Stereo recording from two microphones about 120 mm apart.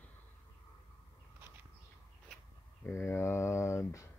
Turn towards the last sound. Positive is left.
turn(degrees=25)  # may be behind; listen again after turning